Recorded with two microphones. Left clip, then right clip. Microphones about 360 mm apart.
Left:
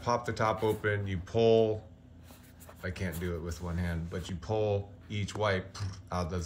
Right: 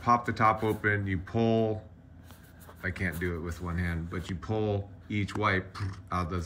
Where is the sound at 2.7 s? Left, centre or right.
Centre.